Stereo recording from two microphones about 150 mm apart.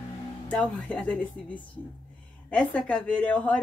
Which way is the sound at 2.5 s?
10° left (ahead or behind).